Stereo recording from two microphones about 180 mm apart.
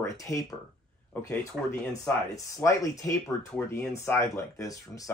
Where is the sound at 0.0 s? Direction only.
20° left (ahead or behind).